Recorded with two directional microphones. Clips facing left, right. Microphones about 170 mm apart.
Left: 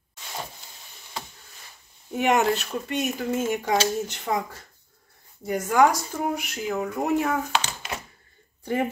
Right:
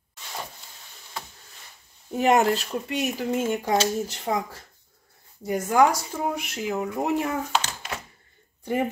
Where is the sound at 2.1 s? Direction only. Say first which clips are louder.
Right 2 dB; 35° right (ahead or behind).